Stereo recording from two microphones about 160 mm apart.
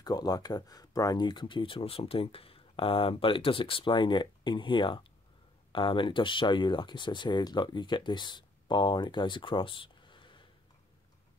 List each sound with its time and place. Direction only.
0.0 s speech: 25° left (ahead or behind)